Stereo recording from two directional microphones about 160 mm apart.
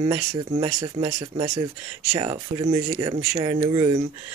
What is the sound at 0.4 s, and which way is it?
Speech, 30° right (ahead or behind).